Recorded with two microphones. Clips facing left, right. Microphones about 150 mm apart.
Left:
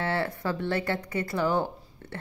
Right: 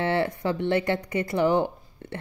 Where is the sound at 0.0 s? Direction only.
20° right (ahead or behind).